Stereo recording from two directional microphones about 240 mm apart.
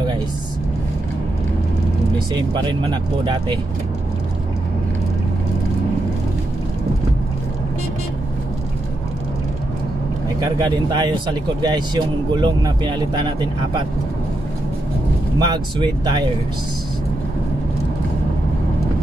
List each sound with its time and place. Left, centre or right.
2.5 s speech: centre
10.4 s speech: centre
15.3 s speech: centre